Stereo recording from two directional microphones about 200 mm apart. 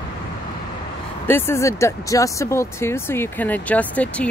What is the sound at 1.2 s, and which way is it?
Speech, 10° left (ahead or behind).